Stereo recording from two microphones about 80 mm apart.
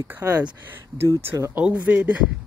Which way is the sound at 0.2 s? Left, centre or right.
Right.